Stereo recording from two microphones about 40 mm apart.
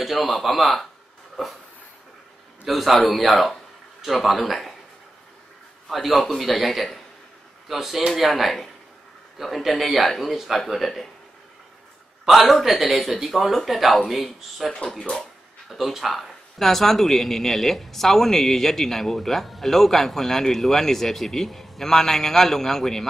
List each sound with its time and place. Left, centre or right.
0.0 s a man's voice: centre
2.6 s a man's voice: centre
5.9 s a man's voice: centre
12.3 s a man's voice: centre
15.0 s speech: left
15.7 s speech: centre